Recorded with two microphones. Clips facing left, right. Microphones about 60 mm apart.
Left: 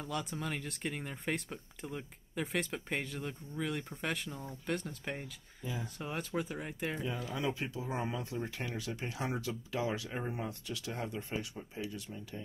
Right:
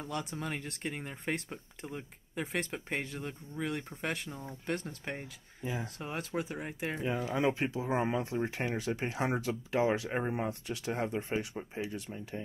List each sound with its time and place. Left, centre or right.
0.1 s speech: centre
2.4 s speech: centre
4.3 s speech: right
5.0 s speech: centre
5.6 s speech: right
5.9 s speech: centre
7.0 s speech: right